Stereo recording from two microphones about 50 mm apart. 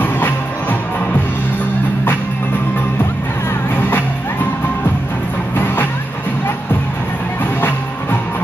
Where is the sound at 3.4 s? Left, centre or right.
Left.